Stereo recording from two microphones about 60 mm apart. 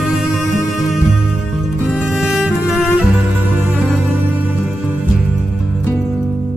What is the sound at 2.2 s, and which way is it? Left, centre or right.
Music, centre.